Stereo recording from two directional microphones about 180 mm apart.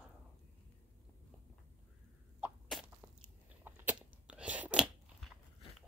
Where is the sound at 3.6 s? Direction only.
10° right (ahead or behind).